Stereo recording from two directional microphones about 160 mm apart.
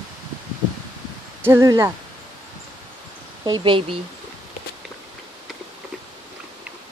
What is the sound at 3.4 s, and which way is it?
Speech, 30° right (ahead or behind).